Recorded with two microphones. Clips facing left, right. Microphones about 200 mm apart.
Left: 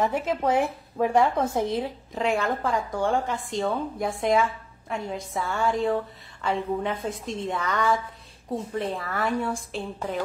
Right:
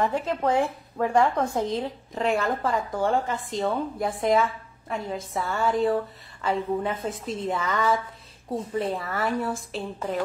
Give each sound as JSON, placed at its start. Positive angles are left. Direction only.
{"t": 0.0, "sound": "speech", "side_deg": 15}
{"t": 2.1, "sound": "a woman's voice", "side_deg": 0}